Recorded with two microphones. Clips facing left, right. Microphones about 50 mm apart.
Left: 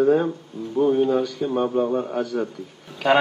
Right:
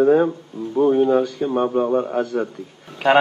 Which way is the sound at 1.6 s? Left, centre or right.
Centre.